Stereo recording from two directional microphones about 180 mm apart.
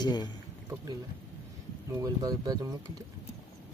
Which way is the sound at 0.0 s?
25° left (ahead or behind).